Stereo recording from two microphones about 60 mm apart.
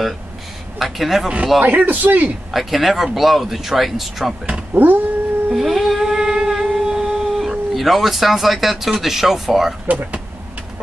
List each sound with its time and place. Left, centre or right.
0.7 s speech: centre
1.6 s speech: right
2.5 s speech: centre
4.5 s speech: right
5.5 s humming: centre
9.0 s speech: centre
9.8 s speech: right